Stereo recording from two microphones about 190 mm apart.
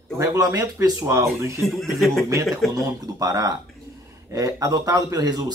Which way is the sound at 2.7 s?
15° right (ahead or behind).